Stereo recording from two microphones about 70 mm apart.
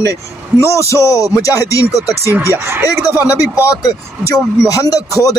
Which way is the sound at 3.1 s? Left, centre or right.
Left.